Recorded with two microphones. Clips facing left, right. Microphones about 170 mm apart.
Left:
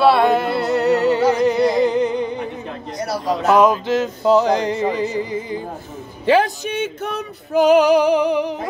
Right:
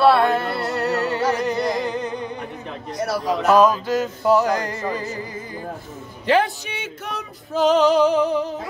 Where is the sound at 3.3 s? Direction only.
20° left (ahead or behind).